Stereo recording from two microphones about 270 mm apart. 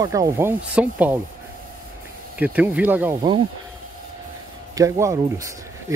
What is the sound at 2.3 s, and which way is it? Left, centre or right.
Speech, centre.